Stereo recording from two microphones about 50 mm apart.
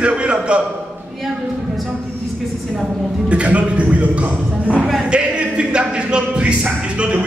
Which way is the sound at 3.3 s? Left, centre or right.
Right.